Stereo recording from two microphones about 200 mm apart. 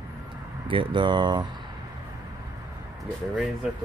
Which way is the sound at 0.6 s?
25° right (ahead or behind).